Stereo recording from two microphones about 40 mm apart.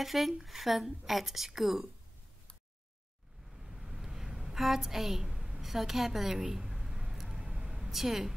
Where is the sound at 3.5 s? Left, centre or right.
Centre.